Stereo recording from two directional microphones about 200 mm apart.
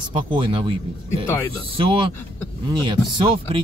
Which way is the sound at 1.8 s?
25° right (ahead or behind).